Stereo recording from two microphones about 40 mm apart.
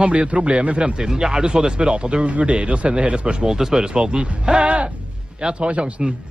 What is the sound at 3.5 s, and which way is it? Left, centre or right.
Speech, centre.